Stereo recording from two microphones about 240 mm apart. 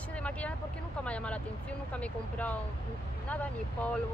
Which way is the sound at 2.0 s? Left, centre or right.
Centre.